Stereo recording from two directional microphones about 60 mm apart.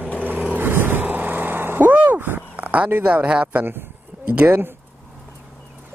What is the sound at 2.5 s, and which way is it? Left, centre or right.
A man's voice, right.